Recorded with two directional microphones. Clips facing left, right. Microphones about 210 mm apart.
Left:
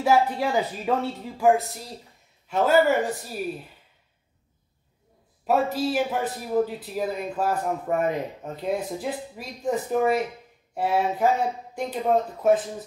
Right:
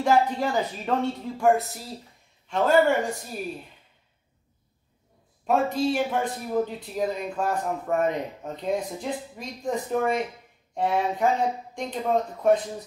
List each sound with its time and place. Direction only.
0.0 s speech: 5° left (ahead or behind)
5.5 s speech: 5° left (ahead or behind)